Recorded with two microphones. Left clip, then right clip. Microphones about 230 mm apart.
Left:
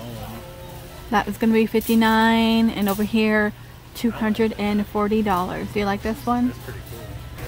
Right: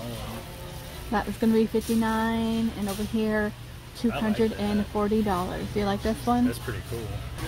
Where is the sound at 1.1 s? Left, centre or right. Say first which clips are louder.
Left 5 dB; centre.